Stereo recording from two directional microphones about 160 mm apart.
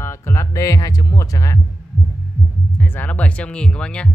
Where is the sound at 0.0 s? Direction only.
15° left (ahead or behind).